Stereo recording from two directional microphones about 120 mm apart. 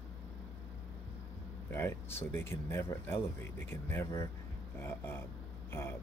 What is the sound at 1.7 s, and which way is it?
Speech, 20° left (ahead or behind).